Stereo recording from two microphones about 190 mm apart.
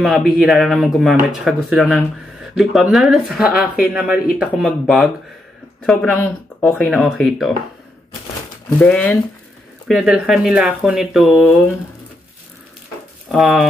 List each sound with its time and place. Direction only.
0.0 s speech: centre (ahead or behind)
3.6 s a man's voice: 50° left (ahead or behind)
3.9 s speech: 5° right (ahead or behind)
8.7 s speech: 5° left (ahead or behind)
13.3 s speech: centre (ahead or behind)